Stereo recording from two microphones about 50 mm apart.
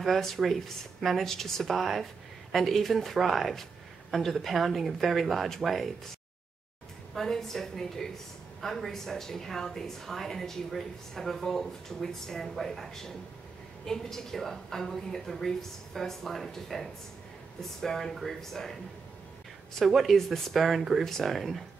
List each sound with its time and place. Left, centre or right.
0.0 s a woman's voice: centre
7.2 s a woman's voice: centre
19.8 s a woman's voice: centre